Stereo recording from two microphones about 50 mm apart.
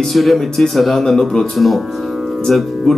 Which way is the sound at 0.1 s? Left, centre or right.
Centre.